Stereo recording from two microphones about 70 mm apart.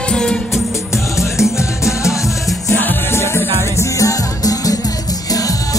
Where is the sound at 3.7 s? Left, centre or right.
Left.